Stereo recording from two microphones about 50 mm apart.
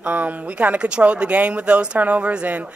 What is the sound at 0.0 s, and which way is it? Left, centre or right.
A woman's voice, right.